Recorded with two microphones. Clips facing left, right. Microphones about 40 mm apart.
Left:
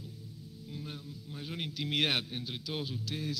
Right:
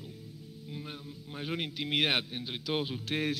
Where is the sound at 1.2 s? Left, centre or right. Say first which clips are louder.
Right 5 dB; right.